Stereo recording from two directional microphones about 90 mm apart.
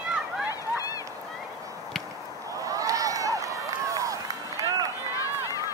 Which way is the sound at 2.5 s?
40° right (ahead or behind).